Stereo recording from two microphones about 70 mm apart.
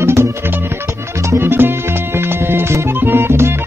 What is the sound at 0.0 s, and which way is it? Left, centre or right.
Music, right.